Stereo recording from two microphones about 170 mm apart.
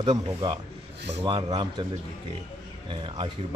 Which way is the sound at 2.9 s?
30° right (ahead or behind).